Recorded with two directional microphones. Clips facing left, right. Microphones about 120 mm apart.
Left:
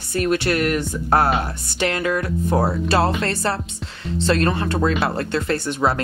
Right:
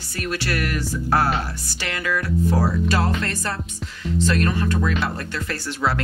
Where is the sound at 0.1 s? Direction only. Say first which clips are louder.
Left 7 dB; 25° left (ahead or behind).